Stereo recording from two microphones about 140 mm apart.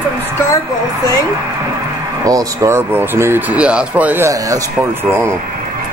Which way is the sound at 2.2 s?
25° right (ahead or behind).